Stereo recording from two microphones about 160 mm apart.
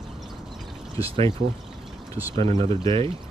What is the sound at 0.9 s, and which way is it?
Speech, 35° right (ahead or behind).